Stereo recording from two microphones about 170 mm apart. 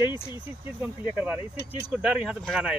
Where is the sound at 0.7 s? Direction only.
10° right (ahead or behind).